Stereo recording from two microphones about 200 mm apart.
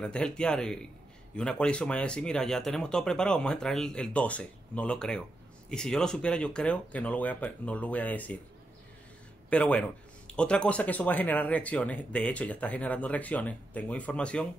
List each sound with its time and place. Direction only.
0.0 s speech: 5° left (ahead or behind)
9.5 s speech: 5° left (ahead or behind)